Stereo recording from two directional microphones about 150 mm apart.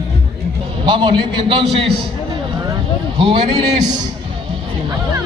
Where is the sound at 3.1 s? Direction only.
35° right (ahead or behind).